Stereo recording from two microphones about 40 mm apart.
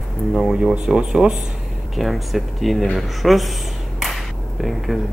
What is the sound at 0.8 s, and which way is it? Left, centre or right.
Speech, centre.